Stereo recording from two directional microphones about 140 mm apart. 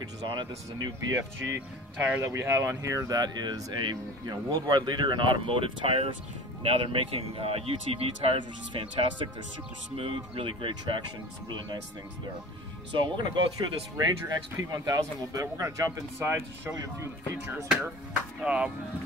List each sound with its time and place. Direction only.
0.2 s speech: 30° right (ahead or behind)
2.0 s speech: 15° right (ahead or behind); by 11.8 s 30° right (ahead or behind)
13.1 s speech: 35° right (ahead or behind)
13.9 s speech: 25° right (ahead or behind)
18.4 s speech: 5° right (ahead or behind)